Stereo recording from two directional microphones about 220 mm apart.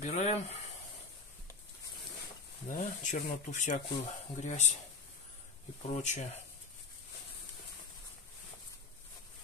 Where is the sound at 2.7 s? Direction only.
35° left (ahead or behind).